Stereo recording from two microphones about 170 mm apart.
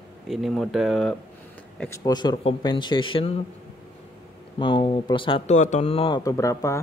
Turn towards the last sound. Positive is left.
turn(degrees=20)  # may be behind; listen again after turning